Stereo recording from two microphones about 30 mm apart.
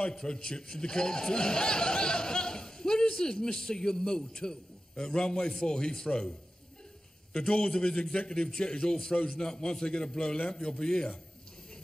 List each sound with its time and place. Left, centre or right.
0.1 s a man's voice: left
7.3 s a man's voice: left